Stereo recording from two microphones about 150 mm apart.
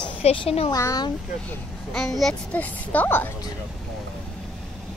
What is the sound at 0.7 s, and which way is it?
Speech, 25° left (ahead or behind).